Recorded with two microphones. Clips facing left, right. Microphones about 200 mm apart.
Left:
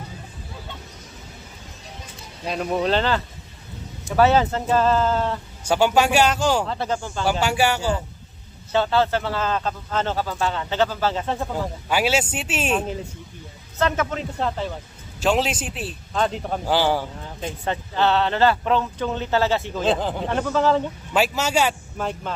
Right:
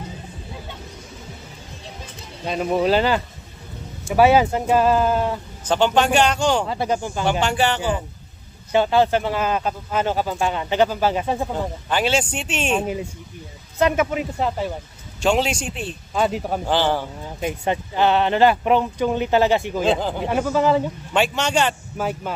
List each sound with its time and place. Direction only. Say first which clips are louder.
2.4 s speech: right 3 dB; centre (ahead or behind)
5.7 s speech: even; 10° left (ahead or behind)
6.6 s speech: right 3 dB; 10° right (ahead or behind)
7.2 s speech: even; 5° left (ahead or behind)
8.7 s speech: right 3 dB; 15° right (ahead or behind)
11.9 s speech: even; 5° left (ahead or behind)
13.7 s speech: right 4 dB; 15° right (ahead or behind)
15.1 s speech: right 1 dB; centre (ahead or behind)
16.1 s speech: right 2 dB; 10° right (ahead or behind)
16.6 s speech: left 1 dB; 10° left (ahead or behind)
17.2 s speech: right 5 dB; 15° right (ahead or behind)
19.9 s speech: right 1 dB; centre (ahead or behind)
21.1 s speech: even; 5° left (ahead or behind)
21.9 s speech: right 2 dB; 5° right (ahead or behind)